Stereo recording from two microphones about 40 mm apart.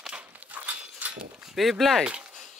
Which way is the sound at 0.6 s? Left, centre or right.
Right.